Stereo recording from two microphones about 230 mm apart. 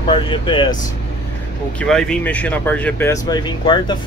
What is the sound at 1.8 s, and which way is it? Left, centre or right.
Speech, centre.